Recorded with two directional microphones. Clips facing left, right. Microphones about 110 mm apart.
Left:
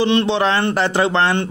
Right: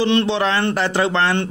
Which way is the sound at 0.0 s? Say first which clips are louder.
Left 1 dB; 20° left (ahead or behind).